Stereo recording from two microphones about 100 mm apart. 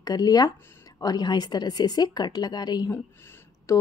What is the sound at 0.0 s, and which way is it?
A woman's voice, 40° left (ahead or behind).